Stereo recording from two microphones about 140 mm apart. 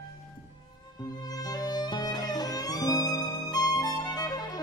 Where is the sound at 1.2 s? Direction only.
30° left (ahead or behind).